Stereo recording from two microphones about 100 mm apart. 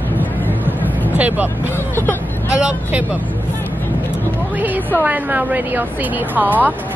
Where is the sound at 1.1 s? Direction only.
15° right (ahead or behind).